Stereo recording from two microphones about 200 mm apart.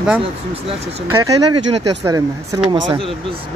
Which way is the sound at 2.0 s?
15° right (ahead or behind).